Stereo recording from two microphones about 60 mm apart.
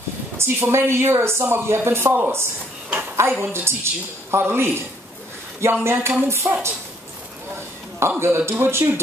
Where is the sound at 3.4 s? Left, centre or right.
Right.